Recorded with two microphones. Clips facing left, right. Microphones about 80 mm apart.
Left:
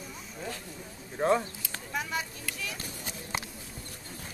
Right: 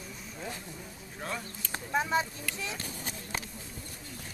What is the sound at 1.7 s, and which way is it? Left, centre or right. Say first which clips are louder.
Speech: right 6 dB; right.